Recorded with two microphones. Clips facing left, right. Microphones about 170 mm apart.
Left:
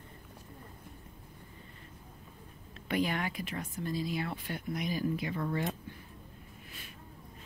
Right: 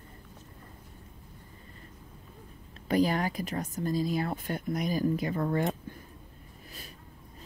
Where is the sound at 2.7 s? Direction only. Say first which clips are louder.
Right 6 dB; 35° right (ahead or behind).